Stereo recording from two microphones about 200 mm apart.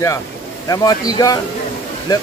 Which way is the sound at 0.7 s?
20° left (ahead or behind).